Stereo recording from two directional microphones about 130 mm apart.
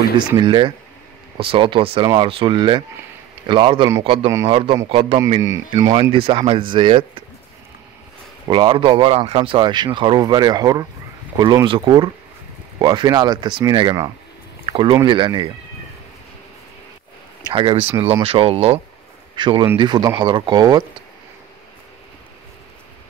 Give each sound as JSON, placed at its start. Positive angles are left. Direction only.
{"t": 0.4, "sound": "speech", "side_deg": -35}
{"t": 5.4, "sound": "speech", "side_deg": -25}
{"t": 6.1, "sound": "speech", "side_deg": -45}
{"t": 8.5, "sound": "speech", "side_deg": -40}
{"t": 14.7, "sound": "a sound", "side_deg": -40}
{"t": 15.0, "sound": "speech", "side_deg": -35}
{"t": 17.5, "sound": "speech", "side_deg": -40}
{"t": 19.3, "sound": "speech", "side_deg": -35}